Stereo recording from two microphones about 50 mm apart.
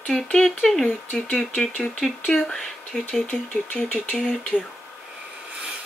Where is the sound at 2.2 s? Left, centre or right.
Centre.